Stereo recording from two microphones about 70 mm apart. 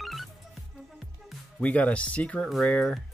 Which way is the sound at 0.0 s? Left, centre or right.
Centre.